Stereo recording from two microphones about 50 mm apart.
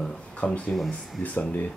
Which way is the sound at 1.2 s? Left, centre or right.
Left.